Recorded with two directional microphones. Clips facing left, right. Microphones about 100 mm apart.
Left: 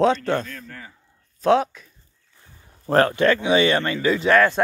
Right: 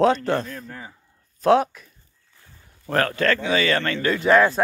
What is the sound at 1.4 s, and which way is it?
Speech, 5° right (ahead or behind).